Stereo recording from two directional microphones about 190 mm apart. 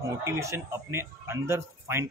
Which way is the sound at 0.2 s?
15° right (ahead or behind).